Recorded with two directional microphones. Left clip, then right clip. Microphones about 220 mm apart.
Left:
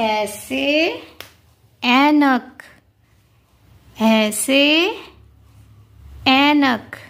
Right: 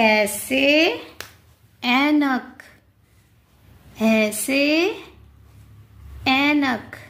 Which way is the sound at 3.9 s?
25° left (ahead or behind).